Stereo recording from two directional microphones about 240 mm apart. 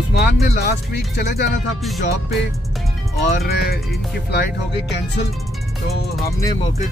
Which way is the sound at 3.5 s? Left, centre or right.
Left.